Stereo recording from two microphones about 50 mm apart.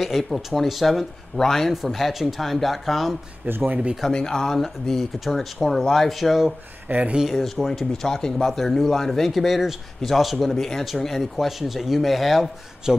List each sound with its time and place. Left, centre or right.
0.1 s a man's voice: centre
3.4 s speech: right
4.1 s speech: centre
6.9 s speech: right
7.3 s speech: centre
8.5 s speech: centre
12.9 s a man's voice: centre